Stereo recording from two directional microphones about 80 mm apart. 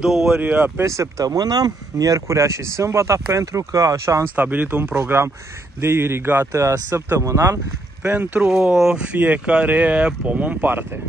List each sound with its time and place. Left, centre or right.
0.0 s speech: centre
0.4 s speech: centre
0.8 s speech: right
4.4 s speech: right
8.0 s speech: centre